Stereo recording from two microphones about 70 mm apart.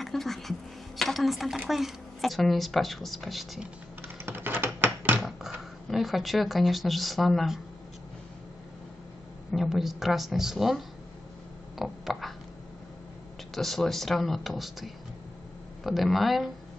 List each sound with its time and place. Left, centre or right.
0.0 s a sound: centre
1.7 s a woman's voice: centre
4.2 s typing: right
5.2 s speech: centre
9.5 s a woman's voice: centre
11.8 s a sound: centre
13.6 s a woman's voice: centre